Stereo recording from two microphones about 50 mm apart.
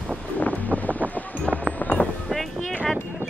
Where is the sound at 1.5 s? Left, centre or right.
Left.